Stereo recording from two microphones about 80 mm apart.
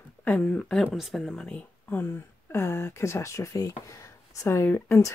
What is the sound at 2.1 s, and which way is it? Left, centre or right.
Speech, left.